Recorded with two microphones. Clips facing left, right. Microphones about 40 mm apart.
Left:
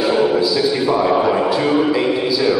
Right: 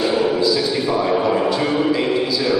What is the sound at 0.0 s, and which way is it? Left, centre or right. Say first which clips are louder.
A man's voice: left 2 dB; centre.